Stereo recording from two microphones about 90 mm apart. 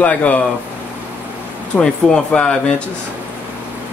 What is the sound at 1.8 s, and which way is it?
Speech, 10° left (ahead or behind).